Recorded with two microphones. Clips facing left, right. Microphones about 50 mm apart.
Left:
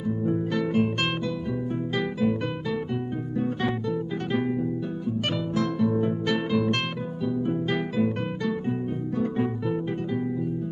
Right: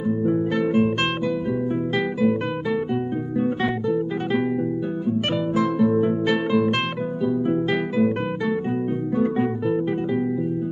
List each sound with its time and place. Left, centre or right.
0.2 s music: right
5.6 s music: centre
9.2 s music: centre